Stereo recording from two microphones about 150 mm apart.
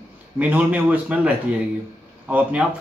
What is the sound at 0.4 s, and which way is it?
A man's voice, 10° right (ahead or behind).